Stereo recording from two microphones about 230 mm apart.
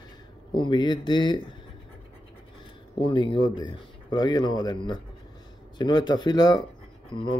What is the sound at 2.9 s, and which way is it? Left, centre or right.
Speech, left.